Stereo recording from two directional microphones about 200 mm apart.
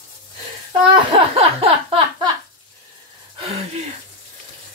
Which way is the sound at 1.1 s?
30° right (ahead or behind).